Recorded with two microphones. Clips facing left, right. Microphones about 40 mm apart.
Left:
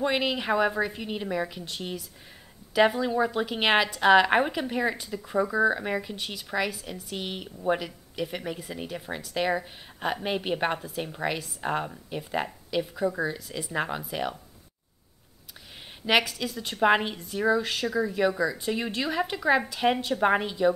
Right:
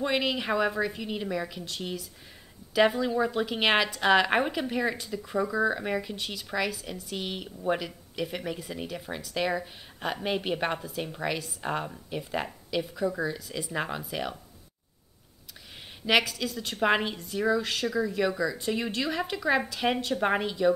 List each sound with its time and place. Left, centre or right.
0.0 s a woman's voice: centre
16.1 s a woman's voice: centre
18.3 s speech: centre
18.6 s a woman's voice: centre